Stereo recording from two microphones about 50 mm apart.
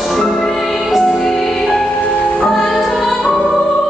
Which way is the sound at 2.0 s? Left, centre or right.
Left.